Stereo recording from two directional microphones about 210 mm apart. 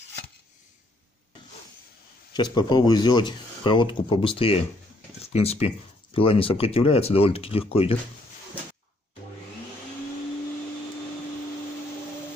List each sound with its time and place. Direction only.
2.3 s speech: 20° left (ahead or behind)